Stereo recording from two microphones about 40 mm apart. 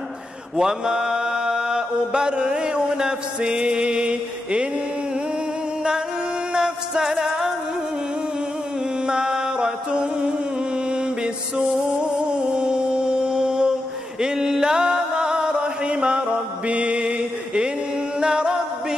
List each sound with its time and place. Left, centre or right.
0.6 s mantra: centre
6.5 s music: centre
9.0 s music: right
12.3 s music: right
18.2 s a capella: right